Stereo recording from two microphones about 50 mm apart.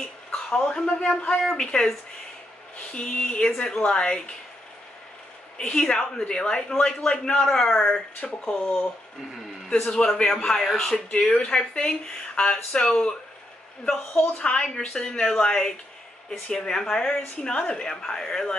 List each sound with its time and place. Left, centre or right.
0.3 s a sound: left
1.0 s a woman's voice: centre
1.4 s a woman's voice: centre
5.6 s a woman's voice: centre
8.2 s speech: left
9.8 s a woman's voice: centre
11.2 s a woman's voice: centre